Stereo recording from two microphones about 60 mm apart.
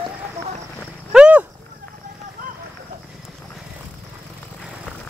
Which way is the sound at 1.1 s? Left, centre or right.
Centre.